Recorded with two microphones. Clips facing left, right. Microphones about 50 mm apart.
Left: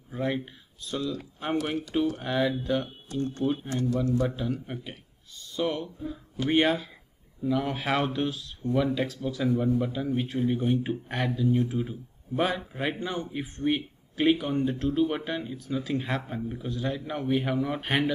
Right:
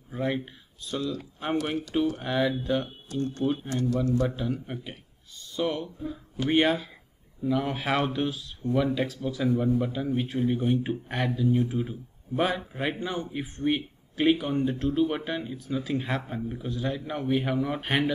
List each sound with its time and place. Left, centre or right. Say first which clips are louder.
0.1 s a man's voice: even; centre
3.1 s speech: even; left
4.0 s a man's voice: right 1 dB; centre
4.3 s a man's voice: even; centre